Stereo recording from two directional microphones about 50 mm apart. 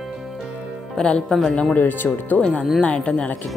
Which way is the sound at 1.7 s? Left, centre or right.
Left.